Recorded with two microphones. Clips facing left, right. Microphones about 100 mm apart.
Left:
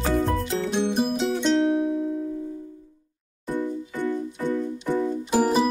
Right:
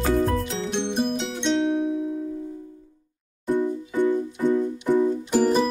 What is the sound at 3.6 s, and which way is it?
Music, 15° right (ahead or behind).